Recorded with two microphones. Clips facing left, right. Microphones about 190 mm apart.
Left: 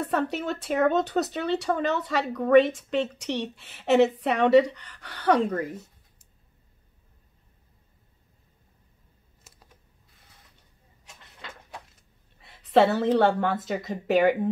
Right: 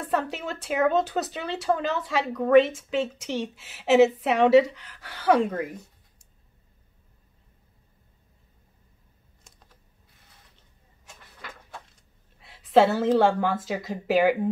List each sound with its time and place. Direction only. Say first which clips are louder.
0.0 s speech: left 1 dB; centre (ahead or behind)
11.1 s cupboard open or close: even; 20° left (ahead or behind)
12.4 s speech: right 1 dB; centre (ahead or behind)